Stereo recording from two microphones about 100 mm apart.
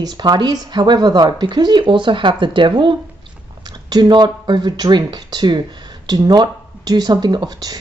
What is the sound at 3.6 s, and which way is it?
A woman's voice, 40° right (ahead or behind).